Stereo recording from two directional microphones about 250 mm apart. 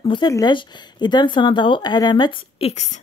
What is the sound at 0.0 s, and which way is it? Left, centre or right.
Speech, centre.